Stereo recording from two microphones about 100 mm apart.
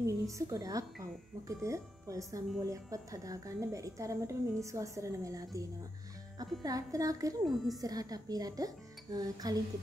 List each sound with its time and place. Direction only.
0.0 s a woman's voice: 30° right (ahead or behind)
7.4 s a woman's voice: centre (ahead or behind)
7.8 s a woman's voice: 40° right (ahead or behind)